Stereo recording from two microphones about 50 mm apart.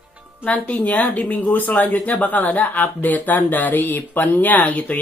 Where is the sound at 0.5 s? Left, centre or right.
Left.